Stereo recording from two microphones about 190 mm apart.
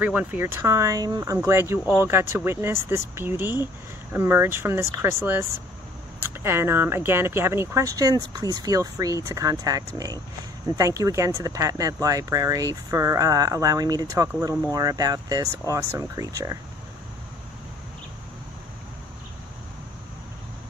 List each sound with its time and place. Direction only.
0.0 s speech: 10° right (ahead or behind)